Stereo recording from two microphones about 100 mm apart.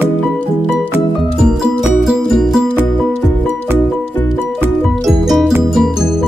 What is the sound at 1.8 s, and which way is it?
Music, 5° right (ahead or behind).